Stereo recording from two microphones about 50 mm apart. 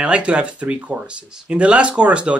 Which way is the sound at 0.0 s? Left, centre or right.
Right.